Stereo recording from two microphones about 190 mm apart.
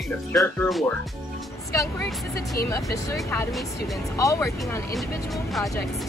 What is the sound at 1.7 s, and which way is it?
Speech, 15° left (ahead or behind).